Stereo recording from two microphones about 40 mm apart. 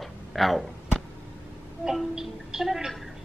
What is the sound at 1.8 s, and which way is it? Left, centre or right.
Music, centre.